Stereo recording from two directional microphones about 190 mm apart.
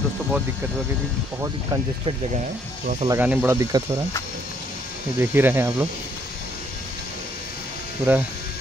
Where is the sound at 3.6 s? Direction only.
20° right (ahead or behind).